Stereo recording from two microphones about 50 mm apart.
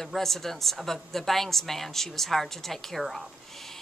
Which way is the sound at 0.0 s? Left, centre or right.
Centre.